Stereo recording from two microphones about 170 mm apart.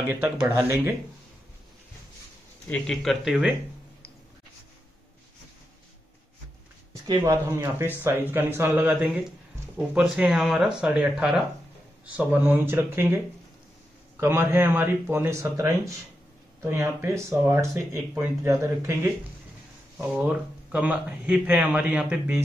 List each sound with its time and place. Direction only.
0.1 s speech: 10° right (ahead or behind)
2.7 s speech: 5° left (ahead or behind)
7.1 s speech: 20° right (ahead or behind)
14.2 s speech: 15° right (ahead or behind)
20.0 s speech: 10° right (ahead or behind)